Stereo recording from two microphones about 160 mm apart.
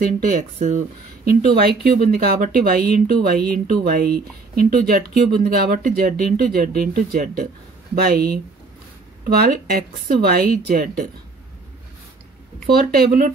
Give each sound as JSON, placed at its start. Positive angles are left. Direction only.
{"t": 0.0, "sound": "speech", "side_deg": -60}
{"t": 0.6, "sound": "speech", "side_deg": -50}
{"t": 2.0, "sound": "speech", "side_deg": -65}
{"t": 12.7, "sound": "speech", "side_deg": -70}